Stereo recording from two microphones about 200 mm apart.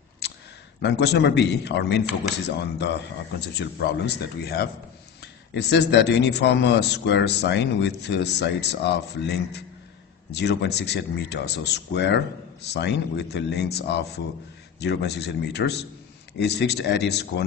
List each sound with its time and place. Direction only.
0.8 s speech: 60° left (ahead or behind)